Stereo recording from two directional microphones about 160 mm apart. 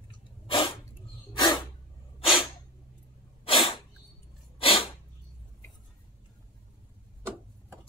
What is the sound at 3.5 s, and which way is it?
Sneeze, 35° left (ahead or behind).